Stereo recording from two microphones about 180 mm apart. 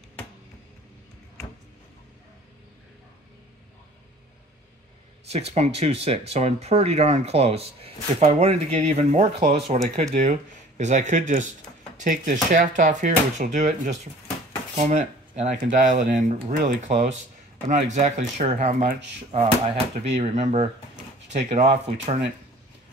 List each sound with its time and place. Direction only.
5.3 s speech: 35° right (ahead or behind)
20.1 s speech: 40° right (ahead or behind)